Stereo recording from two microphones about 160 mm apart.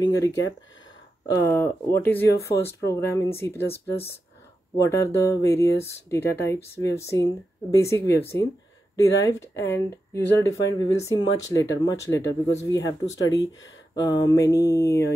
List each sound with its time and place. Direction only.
0.0 s speech: 20° left (ahead or behind)